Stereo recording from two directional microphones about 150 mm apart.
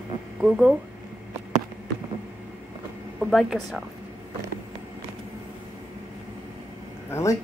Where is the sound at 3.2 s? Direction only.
Centre (ahead or behind).